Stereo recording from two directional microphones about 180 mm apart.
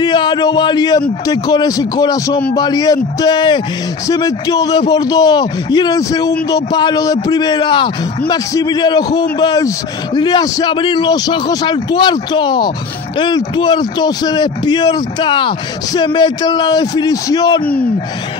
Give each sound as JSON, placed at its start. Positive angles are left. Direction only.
{"t": 0.0, "sound": "speech", "side_deg": 25}